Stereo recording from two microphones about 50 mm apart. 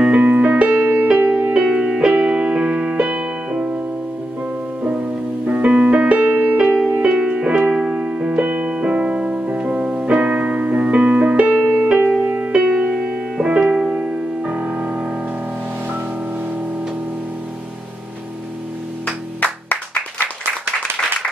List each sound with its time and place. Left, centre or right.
0.0 s music: right
0.7 s music: right
1.6 s music: centre
5.5 s music: right
6.6 s music: centre
7.0 s music: centre
12.7 s music: centre
14.5 s music: right
19.4 s music: left